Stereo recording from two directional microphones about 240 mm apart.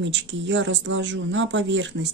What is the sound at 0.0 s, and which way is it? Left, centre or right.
A woman's voice, right.